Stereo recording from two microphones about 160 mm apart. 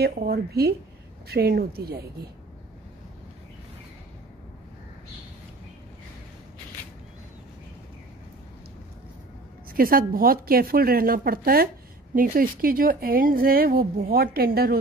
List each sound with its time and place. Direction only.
0.0 s a woman's voice: 75° right (ahead or behind)
9.7 s a woman's voice: 65° right (ahead or behind)